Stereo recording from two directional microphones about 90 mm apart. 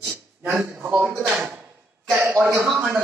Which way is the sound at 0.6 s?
25° right (ahead or behind).